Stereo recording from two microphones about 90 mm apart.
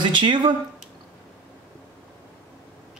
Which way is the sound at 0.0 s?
60° right (ahead or behind).